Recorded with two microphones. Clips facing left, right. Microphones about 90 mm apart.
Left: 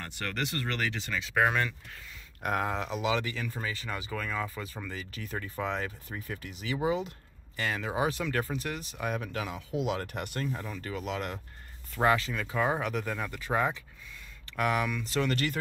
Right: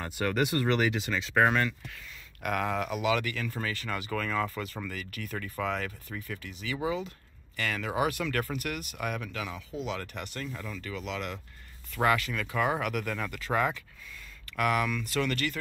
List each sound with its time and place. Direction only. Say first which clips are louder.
0.0 s speech: right 6 dB; 15° right (ahead or behind); by 1.6 s centre (ahead or behind)
2.4 s speech: right 1 dB; 25° left (ahead or behind)
4.9 s speech: even; 25° left (ahead or behind)
6.0 s speech: even; 35° left (ahead or behind)
7.5 s speech: right 1 dB; 25° left (ahead or behind)
9.0 s speech: left 2 dB; 35° left (ahead or behind)
9.8 s speech: left 3 dB; 45° left (ahead or behind)
10.4 s speech: left 3 dB; 30° left (ahead or behind)
11.9 s speech: even; 25° left (ahead or behind)